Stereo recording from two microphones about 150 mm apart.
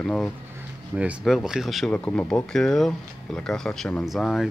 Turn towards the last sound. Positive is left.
turn(degrees=0)  # may be behind; listen again after turning